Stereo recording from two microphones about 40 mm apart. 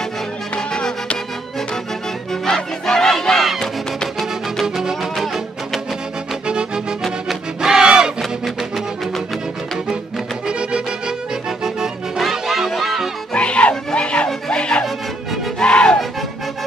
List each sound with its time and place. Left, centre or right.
0.6 s music: left
2.4 s battle cry: centre
3.5 s music: centre
6.4 s music: right
10.4 s accordion: right
12.2 s music: centre
13.3 s music: left